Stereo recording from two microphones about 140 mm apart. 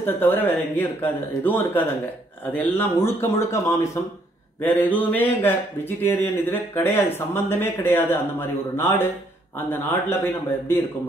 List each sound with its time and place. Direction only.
0.0 s speech: 15° left (ahead or behind)